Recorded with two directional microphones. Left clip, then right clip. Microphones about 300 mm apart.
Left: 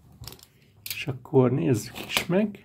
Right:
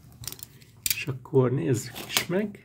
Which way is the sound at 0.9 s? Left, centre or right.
Centre.